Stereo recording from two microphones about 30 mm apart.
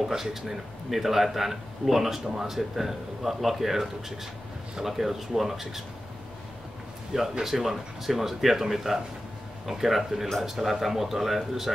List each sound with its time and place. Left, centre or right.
0.0 s speech: centre
7.1 s speech: centre